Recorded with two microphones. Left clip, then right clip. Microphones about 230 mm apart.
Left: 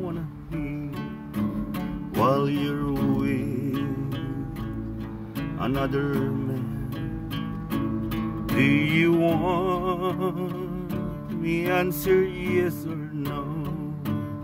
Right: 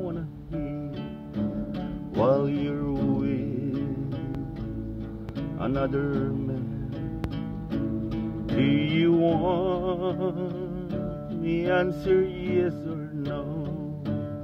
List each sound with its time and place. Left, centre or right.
2.1 s music: left
5.6 s music: left
7.7 s music: left